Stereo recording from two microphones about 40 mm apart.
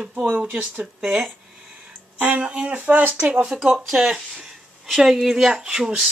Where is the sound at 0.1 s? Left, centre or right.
Right.